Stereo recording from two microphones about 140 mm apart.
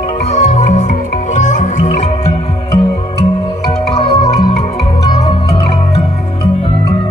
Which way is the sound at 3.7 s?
50° left (ahead or behind).